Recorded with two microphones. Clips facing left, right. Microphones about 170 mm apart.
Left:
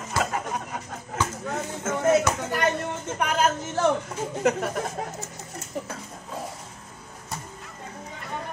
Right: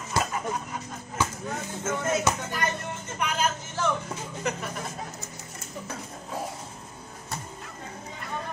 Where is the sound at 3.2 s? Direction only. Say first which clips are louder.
Left 4 dB; 50° left (ahead or behind).